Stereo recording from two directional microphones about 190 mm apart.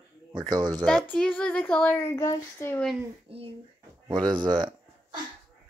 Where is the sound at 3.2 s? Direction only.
30° right (ahead or behind).